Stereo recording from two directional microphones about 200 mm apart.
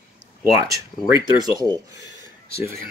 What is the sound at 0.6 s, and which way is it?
Speech, 15° right (ahead or behind).